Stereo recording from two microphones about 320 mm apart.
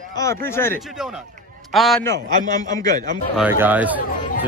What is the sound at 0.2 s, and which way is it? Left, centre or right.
Speech, centre.